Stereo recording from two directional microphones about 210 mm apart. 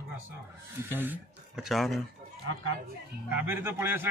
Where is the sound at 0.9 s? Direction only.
10° right (ahead or behind).